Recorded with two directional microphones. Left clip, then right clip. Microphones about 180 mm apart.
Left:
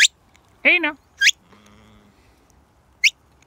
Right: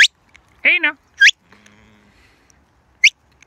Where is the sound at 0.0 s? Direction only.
10° left (ahead or behind).